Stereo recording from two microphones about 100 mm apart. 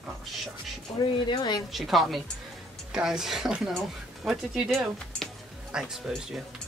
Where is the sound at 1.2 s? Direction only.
50° left (ahead or behind).